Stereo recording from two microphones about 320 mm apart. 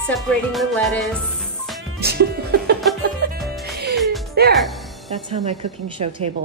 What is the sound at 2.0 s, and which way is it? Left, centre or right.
Music, right.